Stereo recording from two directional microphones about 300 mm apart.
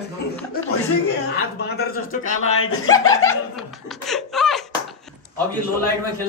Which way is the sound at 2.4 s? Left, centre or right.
Left.